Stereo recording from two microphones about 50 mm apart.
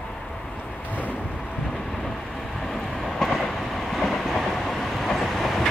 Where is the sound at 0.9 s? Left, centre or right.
Left.